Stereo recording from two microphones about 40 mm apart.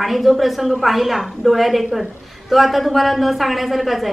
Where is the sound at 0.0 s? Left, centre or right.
Centre.